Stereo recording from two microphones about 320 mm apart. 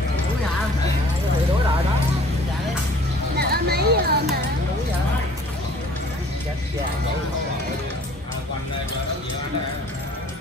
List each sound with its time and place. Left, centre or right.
3.3 s music: right